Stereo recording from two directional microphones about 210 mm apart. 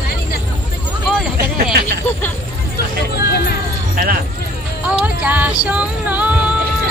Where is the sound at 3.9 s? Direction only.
45° right (ahead or behind).